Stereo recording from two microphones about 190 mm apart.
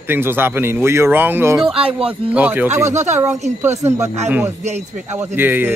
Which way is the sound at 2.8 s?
35° right (ahead or behind).